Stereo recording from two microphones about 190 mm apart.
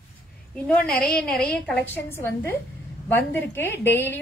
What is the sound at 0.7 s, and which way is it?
A woman's voice, 5° left (ahead or behind).